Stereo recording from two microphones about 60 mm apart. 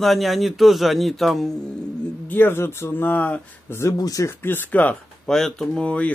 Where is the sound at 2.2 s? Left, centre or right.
Left.